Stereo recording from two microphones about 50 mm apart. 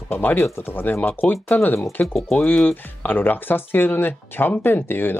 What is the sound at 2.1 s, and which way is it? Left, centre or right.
Speech, centre.